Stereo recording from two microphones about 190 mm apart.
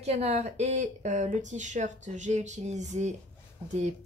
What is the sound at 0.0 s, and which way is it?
Speech, 35° right (ahead or behind).